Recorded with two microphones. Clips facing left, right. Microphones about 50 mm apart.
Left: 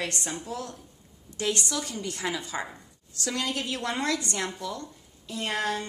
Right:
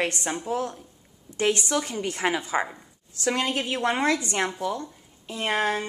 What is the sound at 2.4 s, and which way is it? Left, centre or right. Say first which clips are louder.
A woman's voice: right 7 dB; right.